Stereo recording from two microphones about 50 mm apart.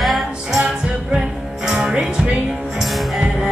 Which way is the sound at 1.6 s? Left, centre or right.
Centre.